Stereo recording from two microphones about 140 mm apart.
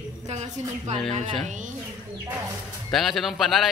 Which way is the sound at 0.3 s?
50° right (ahead or behind).